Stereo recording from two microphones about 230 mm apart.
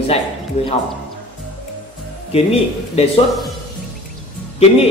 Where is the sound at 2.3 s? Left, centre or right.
Left.